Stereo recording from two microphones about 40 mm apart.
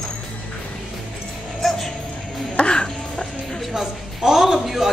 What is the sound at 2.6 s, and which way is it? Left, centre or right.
Music, left.